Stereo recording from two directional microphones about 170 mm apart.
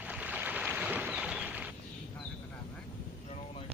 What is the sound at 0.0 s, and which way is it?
Boat, 10° right (ahead or behind).